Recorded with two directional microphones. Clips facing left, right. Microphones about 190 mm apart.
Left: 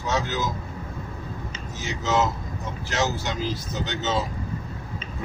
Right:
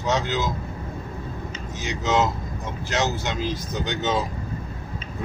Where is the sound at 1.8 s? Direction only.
15° right (ahead or behind).